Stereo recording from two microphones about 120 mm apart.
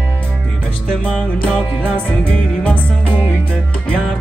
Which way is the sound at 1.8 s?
15° left (ahead or behind).